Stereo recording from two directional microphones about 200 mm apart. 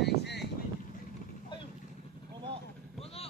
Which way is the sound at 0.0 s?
55° left (ahead or behind).